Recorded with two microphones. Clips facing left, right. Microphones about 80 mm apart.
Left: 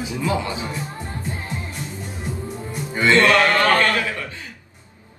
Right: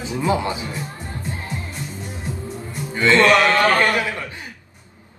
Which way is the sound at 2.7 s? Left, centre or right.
Left.